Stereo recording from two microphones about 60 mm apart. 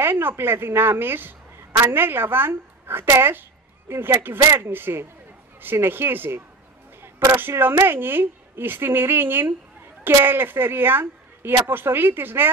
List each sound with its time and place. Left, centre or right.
0.0 s a woman's voice: right